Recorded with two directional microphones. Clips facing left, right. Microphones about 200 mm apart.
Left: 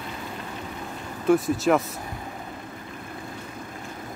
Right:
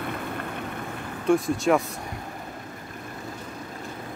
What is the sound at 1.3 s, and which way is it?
Speech, centre (ahead or behind).